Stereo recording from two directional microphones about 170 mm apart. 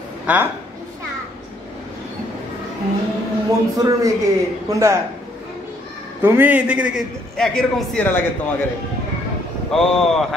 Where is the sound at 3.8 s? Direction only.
20° right (ahead or behind).